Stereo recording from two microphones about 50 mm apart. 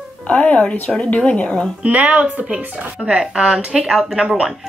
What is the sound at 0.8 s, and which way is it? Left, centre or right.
Speech, left.